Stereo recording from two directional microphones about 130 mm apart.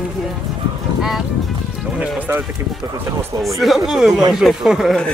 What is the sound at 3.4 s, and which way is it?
Speech, centre (ahead or behind).